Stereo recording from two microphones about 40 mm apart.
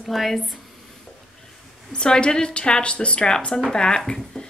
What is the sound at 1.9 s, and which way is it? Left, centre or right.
A woman's voice, left.